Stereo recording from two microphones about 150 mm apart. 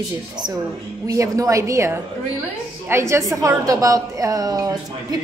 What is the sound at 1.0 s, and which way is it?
A woman's voice, 20° right (ahead or behind).